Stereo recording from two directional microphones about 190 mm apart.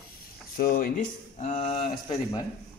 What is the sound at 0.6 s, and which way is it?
Speech, 50° left (ahead or behind).